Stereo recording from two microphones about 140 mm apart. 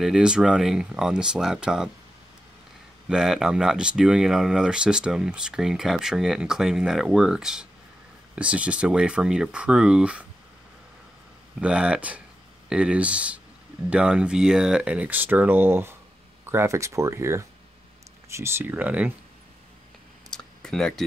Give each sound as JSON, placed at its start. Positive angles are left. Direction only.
{"t": 0.0, "sound": "speech", "side_deg": -5}
{"t": 3.1, "sound": "speech", "side_deg": -5}
{"t": 11.6, "sound": "speech", "side_deg": -5}
{"t": 20.2, "sound": "a sound", "side_deg": 5}